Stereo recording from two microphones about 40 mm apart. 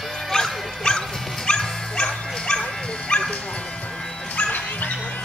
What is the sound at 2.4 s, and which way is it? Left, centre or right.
Dog, centre.